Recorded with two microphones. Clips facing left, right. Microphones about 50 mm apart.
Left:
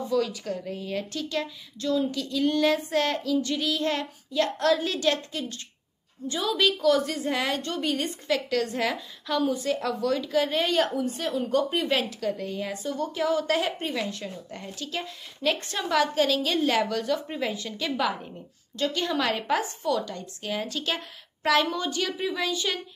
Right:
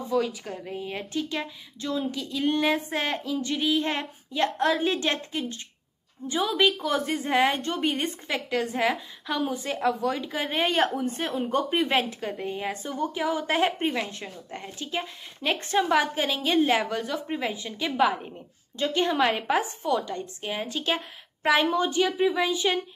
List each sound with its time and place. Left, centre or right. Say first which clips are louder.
0.1 s a woman's voice: even; centre